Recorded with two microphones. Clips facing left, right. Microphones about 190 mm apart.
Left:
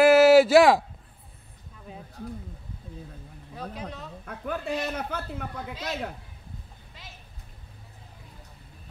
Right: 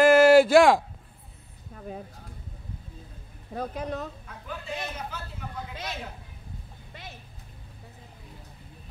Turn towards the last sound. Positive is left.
turn(degrees=-60)  # may be behind; listen again after turning